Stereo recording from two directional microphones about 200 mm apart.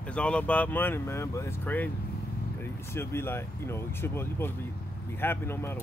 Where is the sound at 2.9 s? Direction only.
10° left (ahead or behind).